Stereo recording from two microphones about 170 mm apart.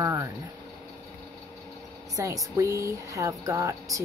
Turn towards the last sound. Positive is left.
turn(degrees=-20)  # may be behind; listen again after turning